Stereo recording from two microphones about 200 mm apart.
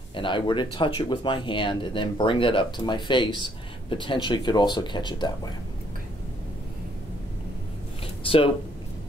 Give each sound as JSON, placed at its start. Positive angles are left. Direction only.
{"t": 0.1, "sound": "speech", "side_deg": 25}
{"t": 8.2, "sound": "speech", "side_deg": 25}